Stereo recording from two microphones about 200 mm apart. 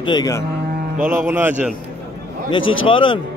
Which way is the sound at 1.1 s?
10° right (ahead or behind).